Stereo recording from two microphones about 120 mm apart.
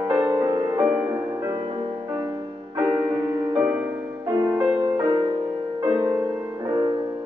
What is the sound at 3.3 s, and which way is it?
Music, 30° right (ahead or behind).